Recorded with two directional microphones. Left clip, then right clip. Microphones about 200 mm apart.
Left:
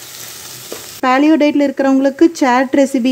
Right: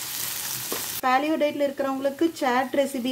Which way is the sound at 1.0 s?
40° left (ahead or behind).